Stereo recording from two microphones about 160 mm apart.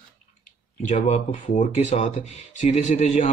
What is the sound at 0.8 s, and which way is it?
A man's voice, 45° left (ahead or behind).